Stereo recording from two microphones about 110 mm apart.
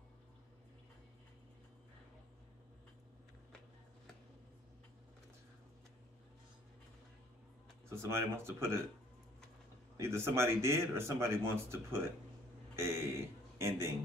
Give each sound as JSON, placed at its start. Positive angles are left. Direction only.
{"t": 7.9, "sound": "a man's voice", "side_deg": -20}
{"t": 9.9, "sound": "a man's voice", "side_deg": -25}